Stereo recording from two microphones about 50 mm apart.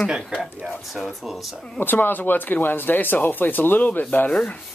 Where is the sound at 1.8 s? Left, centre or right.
Left.